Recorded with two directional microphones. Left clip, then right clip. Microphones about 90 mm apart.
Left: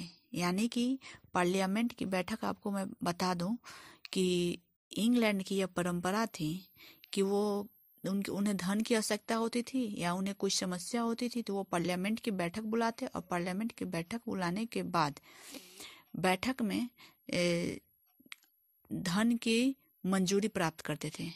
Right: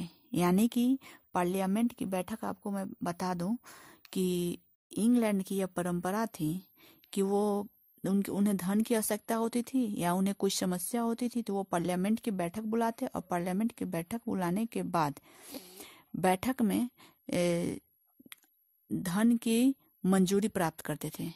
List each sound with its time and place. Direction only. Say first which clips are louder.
0.0 s speech: right 5 dB; 80° right; by 1.4 s 50° right (ahead or behind)
1.4 s speech: even; 35° right (ahead or behind); by 17.8 s 60° right (ahead or behind)
19.0 s speech: right 2 dB; 40° right (ahead or behind)
19.5 s speech: right 2 dB; 55° right (ahead or behind)